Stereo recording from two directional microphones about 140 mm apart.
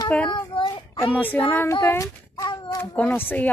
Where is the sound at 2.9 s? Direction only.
10° left (ahead or behind).